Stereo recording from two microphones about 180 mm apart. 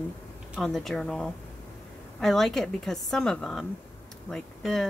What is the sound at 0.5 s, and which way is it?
A woman's voice, centre (ahead or behind).